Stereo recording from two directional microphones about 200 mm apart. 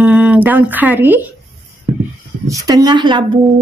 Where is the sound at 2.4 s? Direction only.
15° right (ahead or behind).